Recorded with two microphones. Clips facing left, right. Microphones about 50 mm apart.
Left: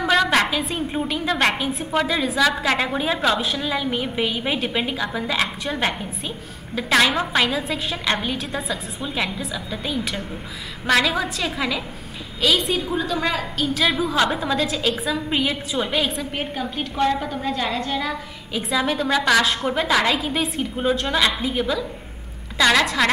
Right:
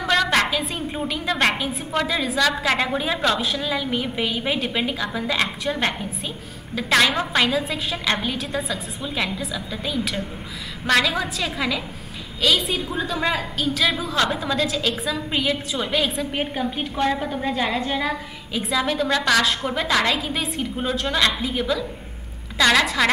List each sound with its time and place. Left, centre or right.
0.0 s a woman's voice: centre
16.3 s a woman's voice: centre
18.5 s a woman's voice: centre